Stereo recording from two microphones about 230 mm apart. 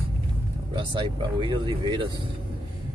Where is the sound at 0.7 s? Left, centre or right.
Right.